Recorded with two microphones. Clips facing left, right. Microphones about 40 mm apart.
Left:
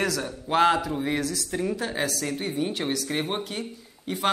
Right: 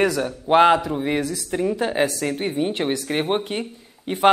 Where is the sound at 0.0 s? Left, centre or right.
Right.